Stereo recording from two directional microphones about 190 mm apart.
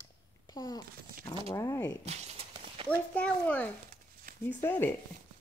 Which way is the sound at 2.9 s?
10° left (ahead or behind).